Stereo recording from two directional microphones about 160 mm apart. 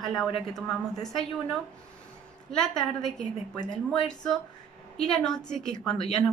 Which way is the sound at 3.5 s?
25° left (ahead or behind).